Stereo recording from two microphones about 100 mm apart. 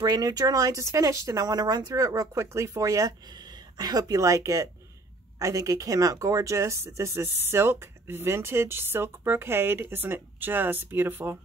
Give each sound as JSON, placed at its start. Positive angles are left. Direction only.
{"t": 0.0, "sound": "speech", "side_deg": -45}